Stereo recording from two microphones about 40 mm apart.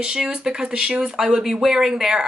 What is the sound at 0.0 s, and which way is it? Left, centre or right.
Speech, centre.